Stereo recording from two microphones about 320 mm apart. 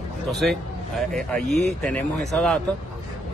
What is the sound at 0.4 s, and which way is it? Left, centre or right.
Speech, centre.